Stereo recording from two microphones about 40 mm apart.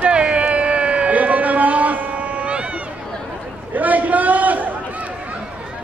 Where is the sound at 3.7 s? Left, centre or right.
Right.